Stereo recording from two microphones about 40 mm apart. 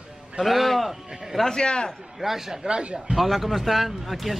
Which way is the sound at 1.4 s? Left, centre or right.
Left.